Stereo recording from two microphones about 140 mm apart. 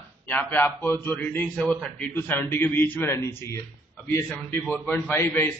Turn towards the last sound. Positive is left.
turn(degrees=15)  # may be behind; listen again after turning